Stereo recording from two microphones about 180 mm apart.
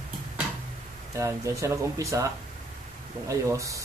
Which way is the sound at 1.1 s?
15° right (ahead or behind).